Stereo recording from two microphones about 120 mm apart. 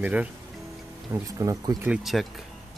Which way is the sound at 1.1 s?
30° right (ahead or behind).